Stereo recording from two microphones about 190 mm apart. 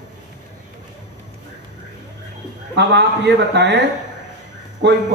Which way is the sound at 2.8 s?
65° right (ahead or behind).